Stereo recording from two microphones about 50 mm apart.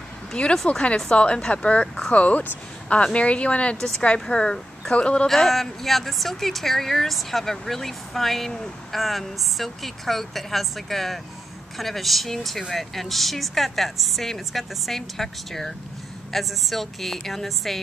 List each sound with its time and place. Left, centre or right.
0.3 s speech: centre
5.3 s speech: centre